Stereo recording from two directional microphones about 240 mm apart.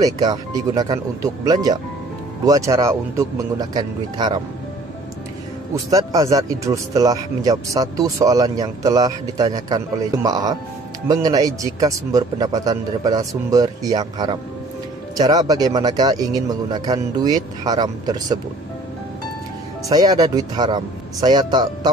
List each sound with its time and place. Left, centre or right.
0.0 s speech: centre
5.9 s speech: centre
19.9 s speech: centre